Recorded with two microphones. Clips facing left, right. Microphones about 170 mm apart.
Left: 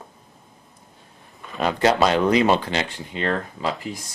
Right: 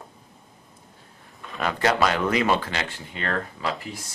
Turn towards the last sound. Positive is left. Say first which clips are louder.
# left 3 dB
turn(degrees=20)  # may be behind; listen again after turning